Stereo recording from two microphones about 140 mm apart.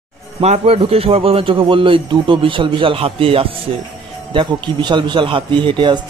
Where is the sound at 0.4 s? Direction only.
45° right (ahead or behind).